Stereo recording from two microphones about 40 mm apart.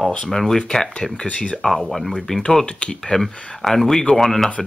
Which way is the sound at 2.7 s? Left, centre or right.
Left.